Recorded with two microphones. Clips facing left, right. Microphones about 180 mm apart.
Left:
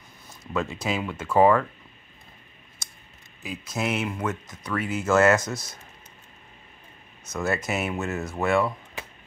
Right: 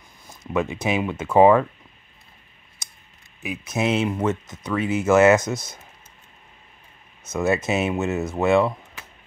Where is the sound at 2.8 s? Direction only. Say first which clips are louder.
Right 1 dB; 15° right (ahead or behind).